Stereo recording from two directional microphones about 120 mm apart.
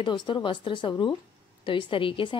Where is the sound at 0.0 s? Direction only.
40° left (ahead or behind).